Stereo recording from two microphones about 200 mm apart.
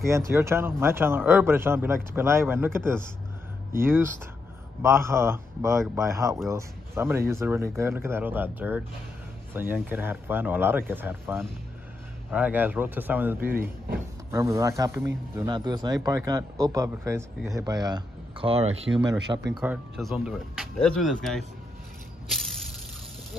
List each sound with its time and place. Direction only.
0.3 s speech: 10° right (ahead or behind); by 18.8 s 30° right (ahead or behind)
19.5 s speech: 5° right (ahead or behind)
22.3 s a sound: centre (ahead or behind)